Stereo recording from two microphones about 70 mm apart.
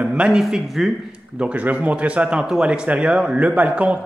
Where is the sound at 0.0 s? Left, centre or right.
Centre.